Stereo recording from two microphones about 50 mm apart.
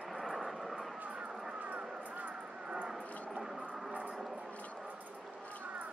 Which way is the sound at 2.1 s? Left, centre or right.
Right.